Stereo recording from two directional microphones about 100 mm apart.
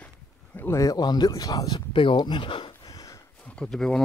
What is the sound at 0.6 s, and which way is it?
Speech, 25° left (ahead or behind).